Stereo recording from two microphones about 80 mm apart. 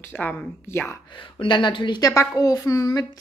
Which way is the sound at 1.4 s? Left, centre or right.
Left.